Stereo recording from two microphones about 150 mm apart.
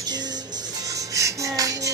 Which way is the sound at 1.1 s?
20° right (ahead or behind).